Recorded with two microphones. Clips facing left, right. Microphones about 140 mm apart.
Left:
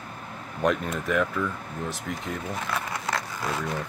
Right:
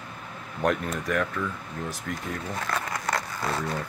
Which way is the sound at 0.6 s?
Centre (ahead or behind).